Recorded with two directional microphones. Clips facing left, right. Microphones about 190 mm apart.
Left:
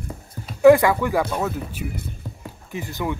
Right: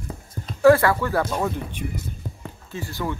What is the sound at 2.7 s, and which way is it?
Speech, 20° left (ahead or behind).